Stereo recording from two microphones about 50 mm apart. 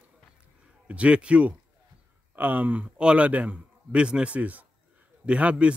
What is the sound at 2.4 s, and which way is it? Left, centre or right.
Speech, right.